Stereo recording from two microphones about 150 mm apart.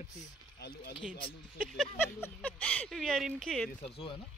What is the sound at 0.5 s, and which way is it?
Speech, 90° left.